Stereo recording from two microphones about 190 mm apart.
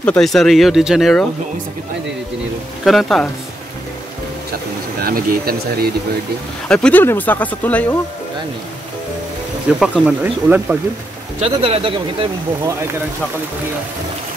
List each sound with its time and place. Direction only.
0.0 s speech: 5° left (ahead or behind)
2.8 s speech: centre (ahead or behind)
5.0 s speech: 55° right (ahead or behind)
6.7 s speech: 5° left (ahead or behind)
9.8 s speech: 5° right (ahead or behind)
11.4 s speech: 30° right (ahead or behind)